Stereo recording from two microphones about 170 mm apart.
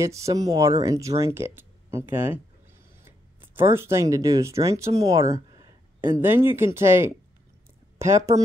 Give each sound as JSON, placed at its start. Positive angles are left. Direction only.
{"t": 0.3, "sound": "speech", "side_deg": -20}